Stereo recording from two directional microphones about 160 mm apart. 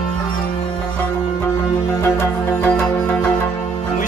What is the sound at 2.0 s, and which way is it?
Music, 15° left (ahead or behind).